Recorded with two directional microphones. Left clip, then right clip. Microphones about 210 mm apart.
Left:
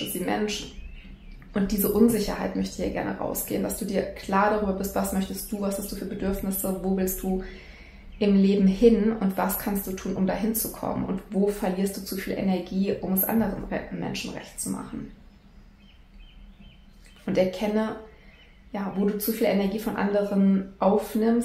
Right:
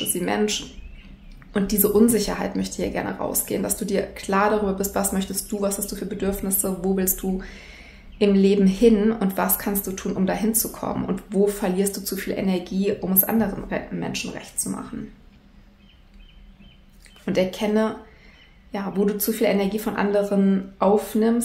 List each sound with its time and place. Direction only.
0.1 s speech: 45° right (ahead or behind)
17.2 s a woman's voice: 40° right (ahead or behind)